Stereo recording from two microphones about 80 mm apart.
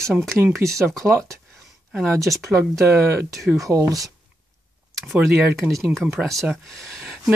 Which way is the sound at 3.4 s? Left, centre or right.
Centre.